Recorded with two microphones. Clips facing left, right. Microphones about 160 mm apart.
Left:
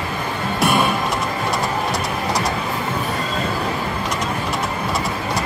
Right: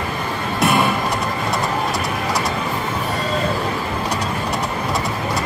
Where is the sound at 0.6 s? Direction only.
Centre (ahead or behind).